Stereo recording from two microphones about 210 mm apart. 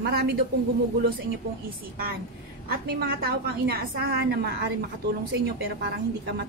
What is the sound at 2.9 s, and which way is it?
A woman's voice, 50° right (ahead or behind).